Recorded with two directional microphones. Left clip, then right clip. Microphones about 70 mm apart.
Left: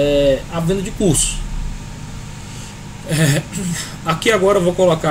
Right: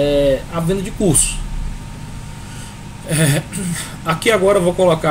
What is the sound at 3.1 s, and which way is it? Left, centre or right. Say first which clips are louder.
Speech: even; centre.